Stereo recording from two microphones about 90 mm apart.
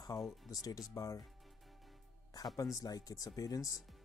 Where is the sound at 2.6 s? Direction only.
40° left (ahead or behind).